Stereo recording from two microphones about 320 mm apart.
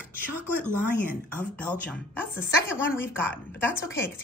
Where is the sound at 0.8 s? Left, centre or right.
Centre.